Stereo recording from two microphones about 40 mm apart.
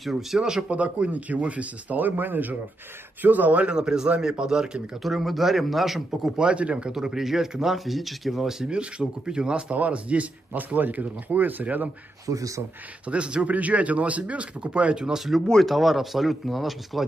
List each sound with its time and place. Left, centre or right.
0.1 s speech: centre
0.7 s speech: right
2.0 s speech: right
3.6 s speech: right
5.0 s speech: centre
6.3 s speech: right
6.9 s speech: centre
8.6 s speech: right
13.1 s speech: right
13.5 s speech: right
15.0 s speech: centre
15.6 s speech: centre